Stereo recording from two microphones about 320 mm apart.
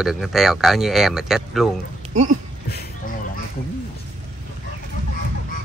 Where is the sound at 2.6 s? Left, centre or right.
Left.